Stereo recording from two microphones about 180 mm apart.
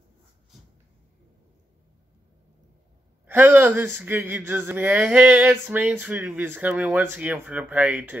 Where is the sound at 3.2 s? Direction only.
10° right (ahead or behind).